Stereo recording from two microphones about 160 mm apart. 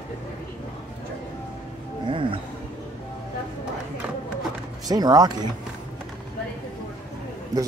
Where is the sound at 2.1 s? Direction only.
30° right (ahead or behind).